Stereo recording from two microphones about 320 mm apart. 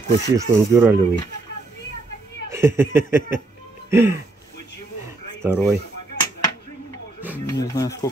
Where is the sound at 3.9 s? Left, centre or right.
Centre.